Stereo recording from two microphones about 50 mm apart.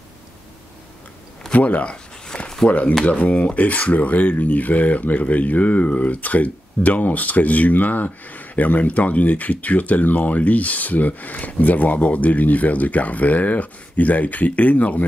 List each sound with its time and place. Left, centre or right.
1.5 s speech: left
2.2 s a sound: centre
3.0 s speech: left